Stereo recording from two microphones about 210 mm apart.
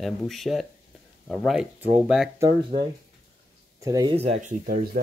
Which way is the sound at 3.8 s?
15° right (ahead or behind).